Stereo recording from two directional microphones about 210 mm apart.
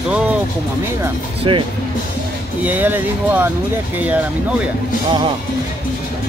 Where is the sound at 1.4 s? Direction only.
25° right (ahead or behind).